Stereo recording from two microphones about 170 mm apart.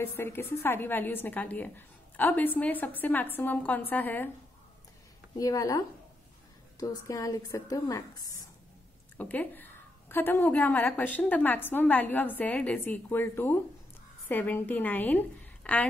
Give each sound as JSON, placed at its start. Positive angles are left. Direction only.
{"t": 0.0, "sound": "a woman's voice", "side_deg": 15}
{"t": 5.4, "sound": "a woman's voice", "side_deg": 20}
{"t": 6.8, "sound": "a woman's voice", "side_deg": 20}
{"t": 9.1, "sound": "a woman's voice", "side_deg": 10}